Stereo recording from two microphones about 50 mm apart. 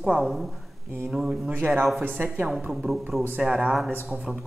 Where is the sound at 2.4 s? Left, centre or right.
Centre.